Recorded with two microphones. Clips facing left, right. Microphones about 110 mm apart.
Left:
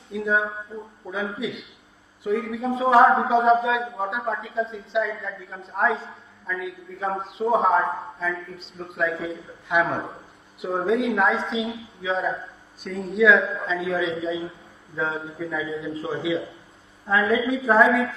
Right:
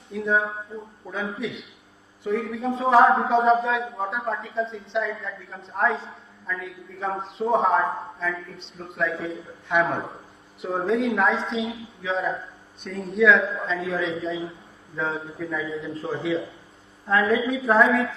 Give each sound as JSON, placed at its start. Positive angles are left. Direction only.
{"t": 0.1, "sound": "a man's voice", "side_deg": 0}